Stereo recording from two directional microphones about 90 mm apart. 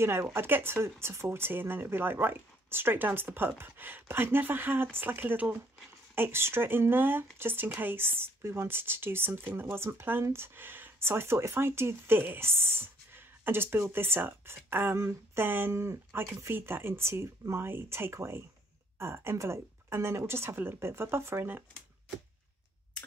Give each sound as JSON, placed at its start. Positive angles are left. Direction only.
{"t": 0.0, "sound": "speech", "side_deg": -30}